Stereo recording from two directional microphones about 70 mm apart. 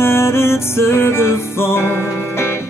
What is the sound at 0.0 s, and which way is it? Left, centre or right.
Music, left.